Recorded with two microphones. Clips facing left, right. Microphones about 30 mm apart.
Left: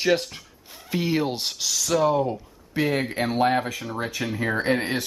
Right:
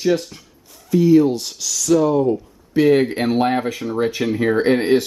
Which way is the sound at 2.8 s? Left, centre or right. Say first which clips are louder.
Right 9 dB; centre.